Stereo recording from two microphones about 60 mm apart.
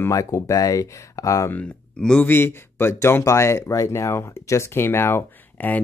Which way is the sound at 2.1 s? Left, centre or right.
Left.